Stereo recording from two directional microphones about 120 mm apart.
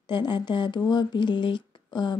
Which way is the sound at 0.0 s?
40° left (ahead or behind).